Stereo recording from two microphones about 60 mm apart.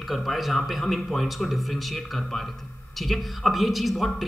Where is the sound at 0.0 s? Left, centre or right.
Centre.